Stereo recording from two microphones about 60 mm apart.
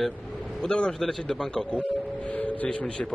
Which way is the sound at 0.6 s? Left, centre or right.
Centre.